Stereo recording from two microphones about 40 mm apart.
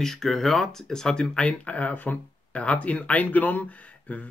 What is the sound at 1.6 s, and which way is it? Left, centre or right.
Speech, left.